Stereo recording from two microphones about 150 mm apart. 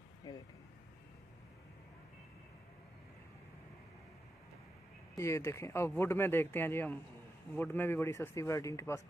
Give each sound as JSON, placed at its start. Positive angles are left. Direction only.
{"t": 0.3, "sound": "vehicle", "side_deg": 25}
{"t": 5.1, "sound": "speech", "side_deg": 20}